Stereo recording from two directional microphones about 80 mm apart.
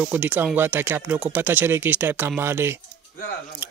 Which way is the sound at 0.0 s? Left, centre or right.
Right.